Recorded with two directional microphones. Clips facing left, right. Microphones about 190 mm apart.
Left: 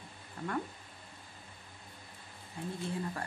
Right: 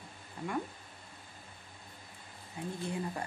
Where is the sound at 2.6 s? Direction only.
15° right (ahead or behind).